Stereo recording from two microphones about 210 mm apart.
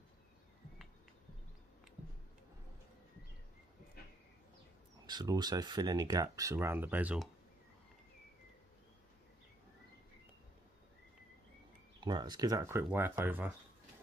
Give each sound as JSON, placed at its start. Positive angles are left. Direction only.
{"t": 5.0, "sound": "speech", "side_deg": -20}
{"t": 12.0, "sound": "speech", "side_deg": -20}